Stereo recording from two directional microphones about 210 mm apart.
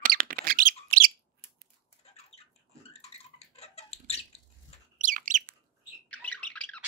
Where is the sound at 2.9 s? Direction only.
30° left (ahead or behind).